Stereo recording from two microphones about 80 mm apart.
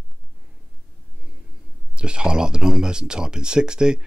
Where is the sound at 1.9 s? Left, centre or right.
Centre.